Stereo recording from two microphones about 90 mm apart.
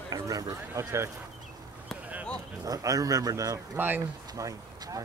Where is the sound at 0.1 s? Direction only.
45° right (ahead or behind).